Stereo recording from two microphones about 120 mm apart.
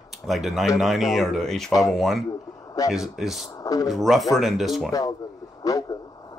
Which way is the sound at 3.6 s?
30° left (ahead or behind).